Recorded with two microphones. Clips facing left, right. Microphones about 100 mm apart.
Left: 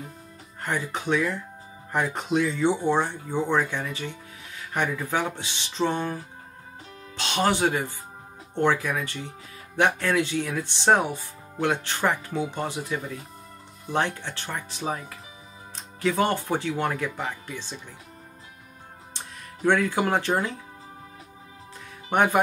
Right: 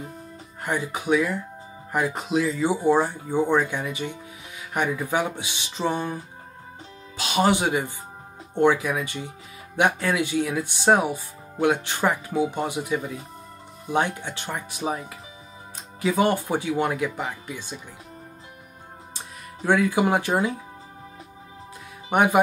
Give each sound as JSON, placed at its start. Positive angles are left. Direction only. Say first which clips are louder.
{"t": 0.6, "sound": "speech", "louder": "right 2 dB", "side_deg": -15}
{"t": 7.2, "sound": "speech", "louder": "right 2 dB", "side_deg": -10}
{"t": 19.1, "sound": "speech", "louder": "even", "side_deg": -10}
{"t": 22.1, "sound": "speech", "louder": "right 2 dB", "side_deg": -10}